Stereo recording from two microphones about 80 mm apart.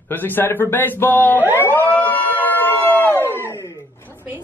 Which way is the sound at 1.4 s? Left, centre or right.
Right.